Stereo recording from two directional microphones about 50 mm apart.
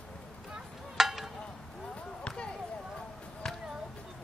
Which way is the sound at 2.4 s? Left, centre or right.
Centre.